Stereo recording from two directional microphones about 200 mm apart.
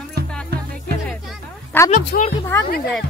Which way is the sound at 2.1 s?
50° left (ahead or behind).